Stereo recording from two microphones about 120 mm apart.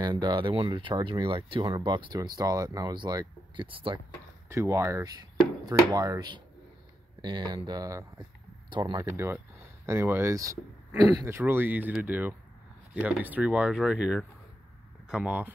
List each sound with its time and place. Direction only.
0.0 s speech: 35° right (ahead or behind)
4.5 s speech: 25° right (ahead or behind)
8.6 s a sound: 40° right (ahead or behind)
8.9 s speech: 25° right (ahead or behind)
11.3 s speech: 15° right (ahead or behind)